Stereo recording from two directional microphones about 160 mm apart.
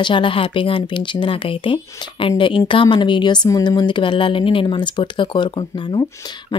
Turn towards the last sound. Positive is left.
turn(degrees=25)  # may be behind; listen again after turning